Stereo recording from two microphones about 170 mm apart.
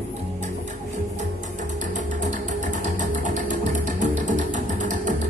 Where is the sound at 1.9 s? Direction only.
45° right (ahead or behind).